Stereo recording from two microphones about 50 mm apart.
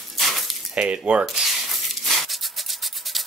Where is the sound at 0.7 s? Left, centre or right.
Right.